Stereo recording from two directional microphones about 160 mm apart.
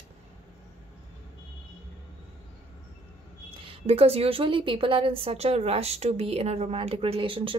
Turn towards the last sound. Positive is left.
turn(degrees=-35)  # may be behind; listen again after turning